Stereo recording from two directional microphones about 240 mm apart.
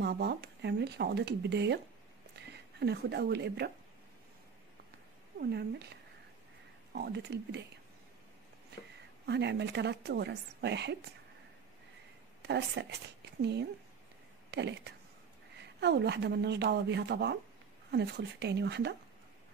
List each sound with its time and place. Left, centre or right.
0.0 s a woman's voice: right
2.8 s a woman's voice: right
5.4 s a woman's voice: right
9.2 s a woman's voice: right
12.4 s a woman's voice: right